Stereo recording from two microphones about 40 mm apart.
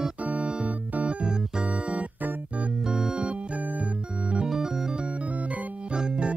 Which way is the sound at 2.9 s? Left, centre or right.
Centre.